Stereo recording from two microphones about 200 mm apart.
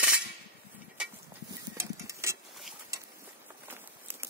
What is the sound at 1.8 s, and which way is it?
Mechanisms, 15° right (ahead or behind).